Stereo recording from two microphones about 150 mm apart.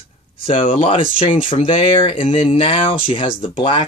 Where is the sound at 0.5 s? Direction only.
35° left (ahead or behind).